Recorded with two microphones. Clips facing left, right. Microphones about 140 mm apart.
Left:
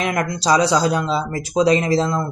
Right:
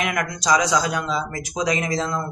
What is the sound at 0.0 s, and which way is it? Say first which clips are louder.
Speech: left 4 dB; 30° left (ahead or behind).